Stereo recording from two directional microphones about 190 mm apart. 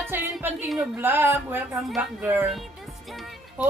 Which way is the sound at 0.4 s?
10° right (ahead or behind).